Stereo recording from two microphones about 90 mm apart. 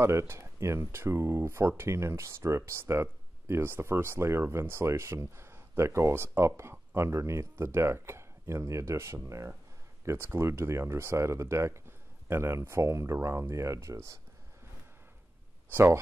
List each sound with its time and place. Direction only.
0.0 s speech: 30° right (ahead or behind)
15.7 s speech: 25° right (ahead or behind)